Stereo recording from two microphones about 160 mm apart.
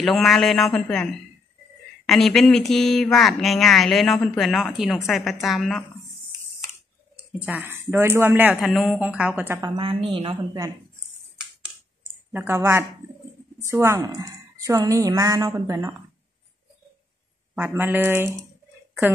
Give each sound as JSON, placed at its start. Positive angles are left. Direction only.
{"t": 0.0, "sound": "speech", "side_deg": 0}
{"t": 7.3, "sound": "speech", "side_deg": -10}
{"t": 8.5, "sound": "speech", "side_deg": 0}
{"t": 9.8, "sound": "speech", "side_deg": -35}
{"t": 12.3, "sound": "a woman's voice", "side_deg": -15}
{"t": 17.6, "sound": "speech", "side_deg": -10}